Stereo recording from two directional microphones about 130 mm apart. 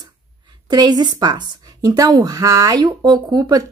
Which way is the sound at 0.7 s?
30° right (ahead or behind).